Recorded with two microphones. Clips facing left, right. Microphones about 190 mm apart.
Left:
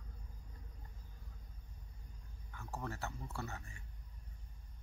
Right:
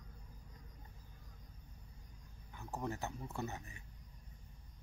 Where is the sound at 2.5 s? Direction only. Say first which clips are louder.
Right 3 dB; 15° right (ahead or behind).